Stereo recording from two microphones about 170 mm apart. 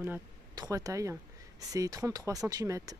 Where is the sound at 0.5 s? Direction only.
20° right (ahead or behind).